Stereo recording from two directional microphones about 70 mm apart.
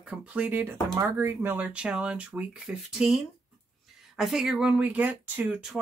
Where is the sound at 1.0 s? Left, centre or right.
Right.